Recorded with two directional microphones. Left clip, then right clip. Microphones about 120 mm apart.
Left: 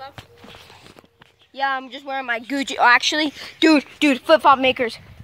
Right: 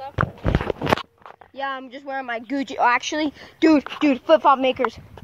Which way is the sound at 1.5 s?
25° left (ahead or behind).